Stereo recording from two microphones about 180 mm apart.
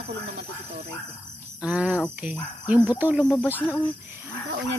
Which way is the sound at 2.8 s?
10° right (ahead or behind).